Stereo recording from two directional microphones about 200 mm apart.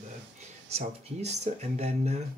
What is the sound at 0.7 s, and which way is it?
Speech, 30° right (ahead or behind).